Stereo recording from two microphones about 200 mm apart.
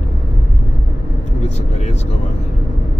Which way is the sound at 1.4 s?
35° left (ahead or behind).